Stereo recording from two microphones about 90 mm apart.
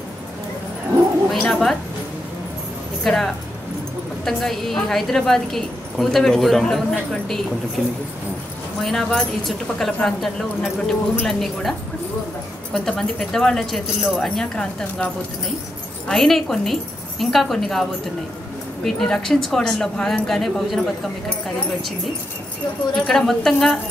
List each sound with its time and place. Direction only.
1.3 s a woman's voice: 5° left (ahead or behind)
3.0 s a woman's voice: 5° left (ahead or behind)
8.8 s a woman's voice: 5° left (ahead or behind)
12.7 s a woman's voice: 5° left (ahead or behind)
16.1 s a woman's voice: 5° left (ahead or behind)
18.9 s a woman's voice: 5° left (ahead or behind)
22.9 s a woman's voice: 5° left (ahead or behind)